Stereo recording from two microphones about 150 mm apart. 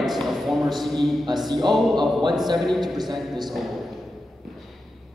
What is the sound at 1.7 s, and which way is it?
A man's voice, centre (ahead or behind).